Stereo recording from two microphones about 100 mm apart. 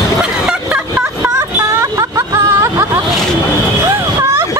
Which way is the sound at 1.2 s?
30° right (ahead or behind).